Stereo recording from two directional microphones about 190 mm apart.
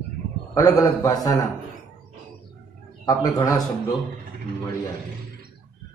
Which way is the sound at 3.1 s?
20° left (ahead or behind).